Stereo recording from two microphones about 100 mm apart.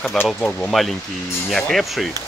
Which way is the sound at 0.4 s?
10° left (ahead or behind).